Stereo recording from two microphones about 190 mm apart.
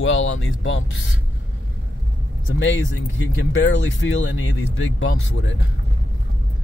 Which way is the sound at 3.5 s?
80° left.